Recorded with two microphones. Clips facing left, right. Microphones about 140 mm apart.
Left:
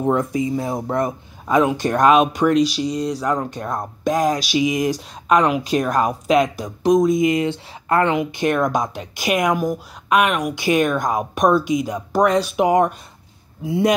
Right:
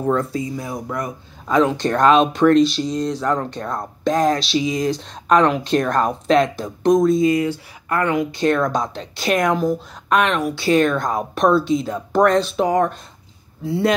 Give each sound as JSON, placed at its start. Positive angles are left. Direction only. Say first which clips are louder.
{"t": 0.0, "sound": "speech", "louder": "left 1 dB", "side_deg": 20}
{"t": 1.5, "sound": "speech", "louder": "even", "side_deg": 15}